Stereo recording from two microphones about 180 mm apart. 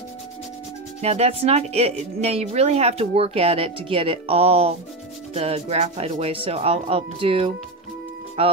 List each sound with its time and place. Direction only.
1.0 s speech: 35° right (ahead or behind)